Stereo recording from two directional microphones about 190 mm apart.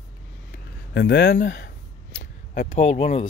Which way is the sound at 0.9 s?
65° left (ahead or behind).